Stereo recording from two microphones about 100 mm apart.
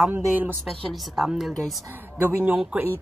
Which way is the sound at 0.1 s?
20° right (ahead or behind).